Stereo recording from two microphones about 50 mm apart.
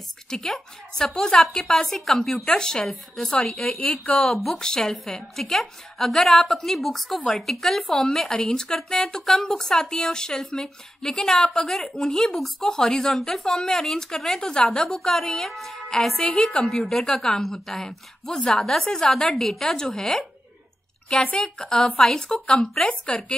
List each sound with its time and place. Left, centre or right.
0.3 s a woman's voice: centre; by 4.3 s left
4.6 s a woman's voice: centre
14.5 s a woman's voice: centre
15.0 s a woman's voice: centre
16.2 s a woman's voice: centre